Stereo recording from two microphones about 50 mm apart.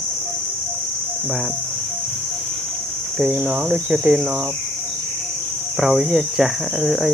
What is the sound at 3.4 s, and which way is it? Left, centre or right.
Speech, centre.